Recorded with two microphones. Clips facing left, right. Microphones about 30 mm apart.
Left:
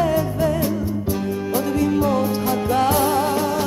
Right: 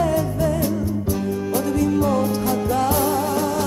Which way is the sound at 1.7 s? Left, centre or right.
Left.